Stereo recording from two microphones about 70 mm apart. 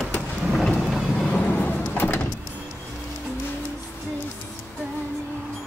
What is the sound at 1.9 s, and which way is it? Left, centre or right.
Sliding door, left.